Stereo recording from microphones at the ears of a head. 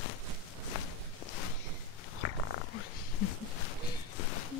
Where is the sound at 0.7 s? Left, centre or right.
Left.